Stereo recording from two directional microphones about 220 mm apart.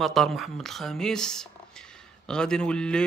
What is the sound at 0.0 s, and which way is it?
Speech, centre (ahead or behind).